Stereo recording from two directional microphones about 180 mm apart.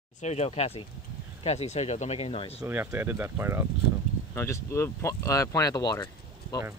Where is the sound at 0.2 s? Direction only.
35° left (ahead or behind).